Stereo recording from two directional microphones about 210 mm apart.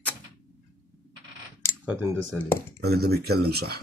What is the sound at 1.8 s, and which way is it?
Speech, 10° right (ahead or behind).